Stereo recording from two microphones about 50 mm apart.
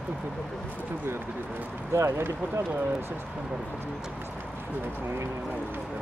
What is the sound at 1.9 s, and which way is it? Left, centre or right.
Speech, right.